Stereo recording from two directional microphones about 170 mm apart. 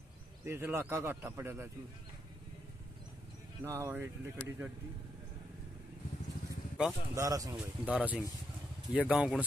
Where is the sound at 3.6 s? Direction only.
15° right (ahead or behind).